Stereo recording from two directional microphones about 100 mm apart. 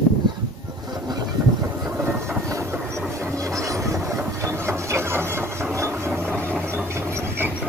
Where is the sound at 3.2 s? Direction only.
35° right (ahead or behind).